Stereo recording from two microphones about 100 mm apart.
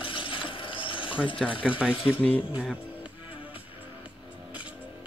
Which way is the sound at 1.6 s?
10° right (ahead or behind).